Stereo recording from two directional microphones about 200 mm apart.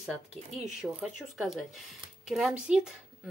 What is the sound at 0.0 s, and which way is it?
Speech, centre (ahead or behind).